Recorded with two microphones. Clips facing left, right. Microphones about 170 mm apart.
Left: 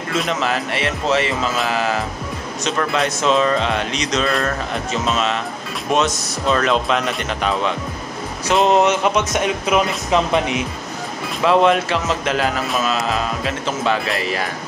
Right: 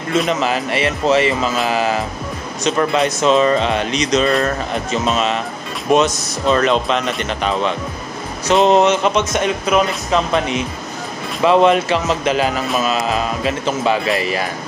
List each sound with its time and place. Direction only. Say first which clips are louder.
0.2 s speech: right 3 dB; centre (ahead or behind); by 10.6 s 15° left (ahead or behind)
11.4 s speech: right 2 dB; centre (ahead or behind)